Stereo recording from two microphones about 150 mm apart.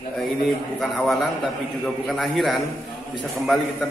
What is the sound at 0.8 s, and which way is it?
A man's voice, centre (ahead or behind).